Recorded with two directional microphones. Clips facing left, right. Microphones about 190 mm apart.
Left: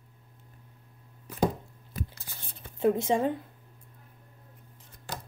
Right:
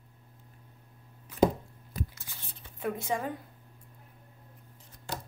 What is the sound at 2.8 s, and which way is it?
Speech, 25° left (ahead or behind).